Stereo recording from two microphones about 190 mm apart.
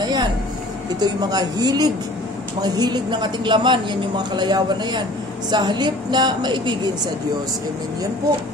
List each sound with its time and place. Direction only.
0.0 s vehicle: 20° right (ahead or behind)
0.9 s speech: 20° right (ahead or behind)